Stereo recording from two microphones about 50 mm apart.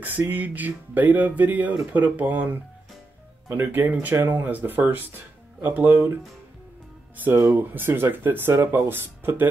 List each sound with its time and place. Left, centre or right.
0.3 s speech: right
7.4 s speech: right